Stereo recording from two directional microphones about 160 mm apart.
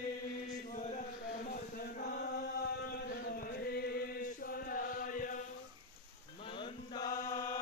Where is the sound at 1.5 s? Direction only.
65° left (ahead or behind).